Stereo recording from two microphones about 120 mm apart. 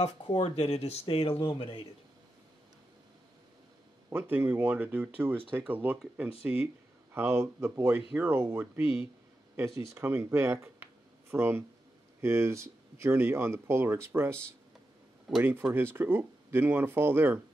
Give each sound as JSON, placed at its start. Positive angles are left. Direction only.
{"t": 0.0, "sound": "speech", "side_deg": 50}
{"t": 4.1, "sound": "speech", "side_deg": -15}
{"t": 9.9, "sound": "speech", "side_deg": -20}